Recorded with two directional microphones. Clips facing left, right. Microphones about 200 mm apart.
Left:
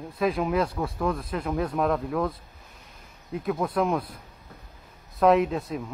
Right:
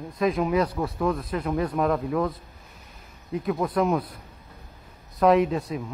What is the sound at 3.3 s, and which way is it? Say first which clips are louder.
Speech: right 1 dB; centre (ahead or behind).